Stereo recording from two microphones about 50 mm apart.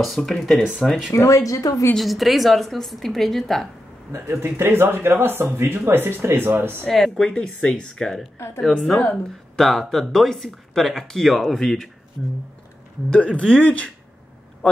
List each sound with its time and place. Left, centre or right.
0.0 s speech: centre
1.1 s speech: left
2.0 s speech: centre
4.1 s a man's voice: right
6.9 s speech: centre
13.1 s speech: left